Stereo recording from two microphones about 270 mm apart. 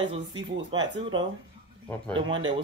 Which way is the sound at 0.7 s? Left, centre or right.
Centre.